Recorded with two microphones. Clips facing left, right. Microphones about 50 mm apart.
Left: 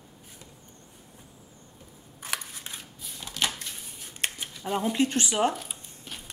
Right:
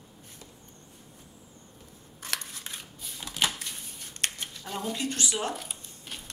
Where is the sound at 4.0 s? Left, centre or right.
Centre.